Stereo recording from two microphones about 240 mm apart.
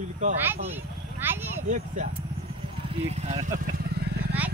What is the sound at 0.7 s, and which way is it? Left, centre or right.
Vehicle, centre.